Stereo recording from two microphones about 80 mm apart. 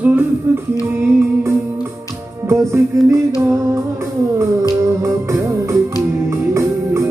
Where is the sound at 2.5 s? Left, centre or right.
Right.